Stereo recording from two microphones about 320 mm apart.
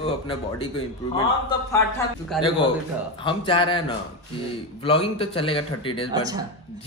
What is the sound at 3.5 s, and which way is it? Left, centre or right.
A man's voice, centre.